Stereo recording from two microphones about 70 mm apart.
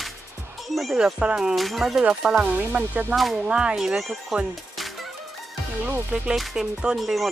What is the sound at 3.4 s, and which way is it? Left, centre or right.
Speech, centre.